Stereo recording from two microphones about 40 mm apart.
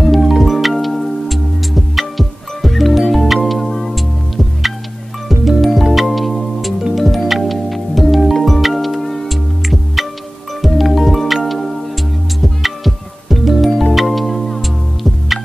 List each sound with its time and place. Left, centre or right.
0.0 s music: centre
5.3 s music: centre